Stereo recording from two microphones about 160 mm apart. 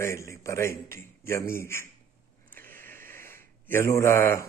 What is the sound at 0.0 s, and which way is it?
Speech, 20° left (ahead or behind).